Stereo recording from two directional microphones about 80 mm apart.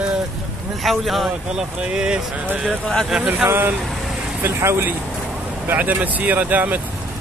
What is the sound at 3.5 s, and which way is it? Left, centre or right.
Speech, right.